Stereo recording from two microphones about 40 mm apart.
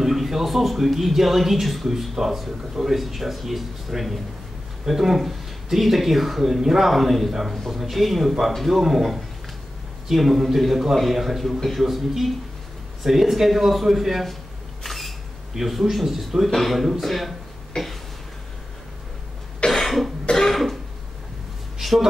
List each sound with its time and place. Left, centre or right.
0.0 s speech: centre
14.8 s single-lens reflex camera: centre
16.4 s speech: centre
17.8 s a sound: centre
19.7 s cough: centre
21.7 s a sound: centre